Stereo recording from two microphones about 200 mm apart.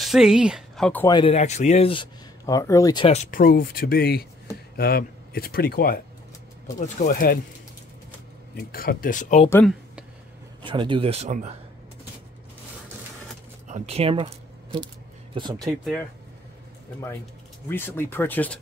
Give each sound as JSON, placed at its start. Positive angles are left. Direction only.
{"t": 0.0, "sound": "speech", "side_deg": 0}
{"t": 1.0, "sound": "speech", "side_deg": 20}
{"t": 1.3, "sound": "speech", "side_deg": 35}
{"t": 3.2, "sound": "speech", "side_deg": 45}
{"t": 8.5, "sound": "speech", "side_deg": 45}
{"t": 9.5, "sound": "speech", "side_deg": 10}
{"t": 10.6, "sound": "speech", "side_deg": -25}
{"t": 13.7, "sound": "speech", "side_deg": -35}
{"t": 15.8, "sound": "speech", "side_deg": 0}
{"t": 17.6, "sound": "speech", "side_deg": 10}